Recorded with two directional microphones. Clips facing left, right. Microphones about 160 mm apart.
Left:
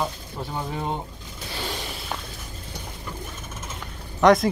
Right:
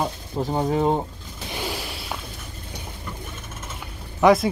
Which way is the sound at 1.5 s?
10° right (ahead or behind).